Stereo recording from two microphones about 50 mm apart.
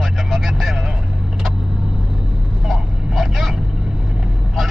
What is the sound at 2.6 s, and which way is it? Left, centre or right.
Vehicle, centre.